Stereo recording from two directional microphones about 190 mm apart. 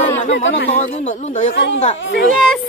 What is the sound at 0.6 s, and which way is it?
Speech, 35° left (ahead or behind).